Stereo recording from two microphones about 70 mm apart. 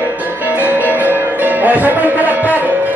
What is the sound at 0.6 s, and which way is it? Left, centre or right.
Music, right.